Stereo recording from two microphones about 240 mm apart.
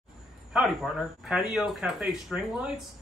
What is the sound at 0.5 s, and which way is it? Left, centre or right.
Speech, centre.